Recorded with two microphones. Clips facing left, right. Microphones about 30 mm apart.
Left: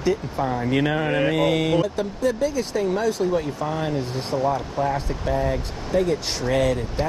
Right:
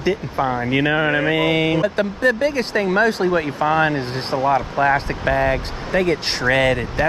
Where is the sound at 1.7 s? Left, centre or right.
Right.